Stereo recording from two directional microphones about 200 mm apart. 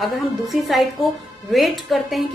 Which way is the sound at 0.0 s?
Centre (ahead or behind).